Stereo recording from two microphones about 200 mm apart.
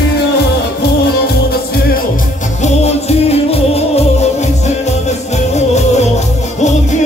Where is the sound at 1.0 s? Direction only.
55° left (ahead or behind).